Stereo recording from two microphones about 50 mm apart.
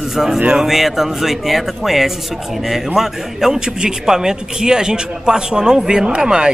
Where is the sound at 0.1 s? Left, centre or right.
Centre.